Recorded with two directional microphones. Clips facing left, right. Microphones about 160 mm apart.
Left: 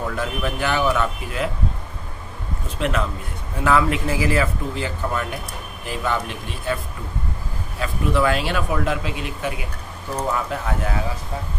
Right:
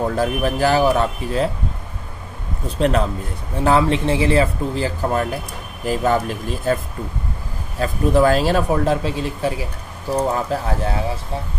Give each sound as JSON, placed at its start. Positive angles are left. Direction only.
{"t": 0.0, "sound": "speech", "side_deg": -35}
{"t": 2.8, "sound": "speech", "side_deg": -35}
{"t": 7.8, "sound": "speech", "side_deg": -40}